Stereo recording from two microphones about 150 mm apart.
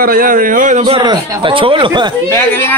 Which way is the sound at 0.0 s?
75° right (ahead or behind).